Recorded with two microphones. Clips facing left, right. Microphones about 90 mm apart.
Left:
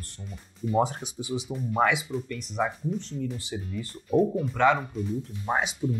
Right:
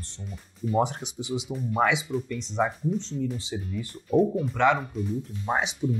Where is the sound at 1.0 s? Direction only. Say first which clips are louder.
Right 1 dB; 20° right (ahead or behind).